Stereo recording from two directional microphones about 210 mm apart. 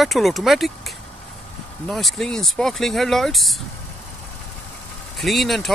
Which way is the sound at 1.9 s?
Centre (ahead or behind).